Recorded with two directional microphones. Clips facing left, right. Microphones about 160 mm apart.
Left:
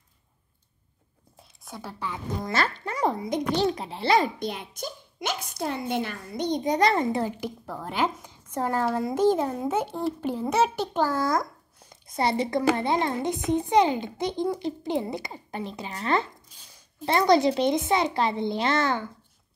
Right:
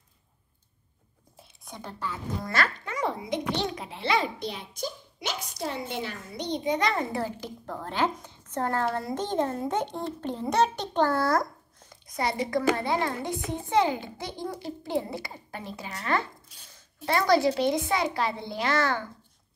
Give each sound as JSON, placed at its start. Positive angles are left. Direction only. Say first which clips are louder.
{"t": 1.6, "sound": "a child's voice", "louder": "left 1 dB", "side_deg": 5}
{"t": 2.5, "sound": "a child's voice", "louder": "left 2 dB", "side_deg": 30}
{"t": 7.1, "sound": "a child's voice", "louder": "left 4 dB", "side_deg": 20}
{"t": 12.1, "sound": "a child's voice", "louder": "left 3 dB", "side_deg": 30}